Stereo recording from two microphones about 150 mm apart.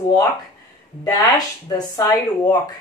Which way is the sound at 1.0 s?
25° left (ahead or behind).